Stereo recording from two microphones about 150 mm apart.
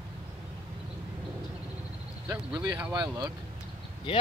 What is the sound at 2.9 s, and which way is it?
Speech, 30° right (ahead or behind).